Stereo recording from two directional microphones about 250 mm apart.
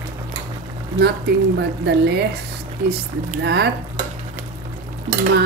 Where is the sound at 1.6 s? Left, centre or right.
Right.